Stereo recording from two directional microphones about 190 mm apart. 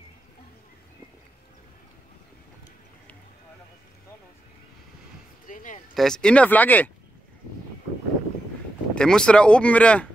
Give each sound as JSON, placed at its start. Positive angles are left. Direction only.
{"t": 5.5, "sound": "a sound", "side_deg": 45}
{"t": 5.9, "sound": "speech", "side_deg": 5}
{"t": 8.9, "sound": "speech", "side_deg": 5}